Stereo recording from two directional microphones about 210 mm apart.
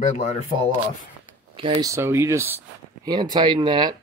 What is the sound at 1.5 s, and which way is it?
Speech, 25° right (ahead or behind).